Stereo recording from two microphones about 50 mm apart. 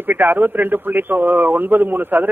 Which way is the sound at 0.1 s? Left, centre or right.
Right.